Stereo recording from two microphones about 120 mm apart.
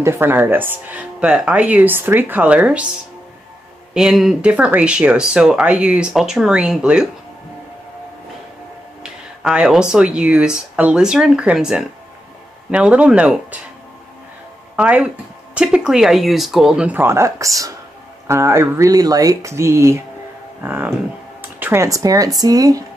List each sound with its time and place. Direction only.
0.0 s speech: 20° right (ahead or behind)
9.0 s speech: 10° right (ahead or behind)
14.8 s speech: 10° right (ahead or behind)
21.4 s music: 15° right (ahead or behind)
21.8 s speech: 30° right (ahead or behind)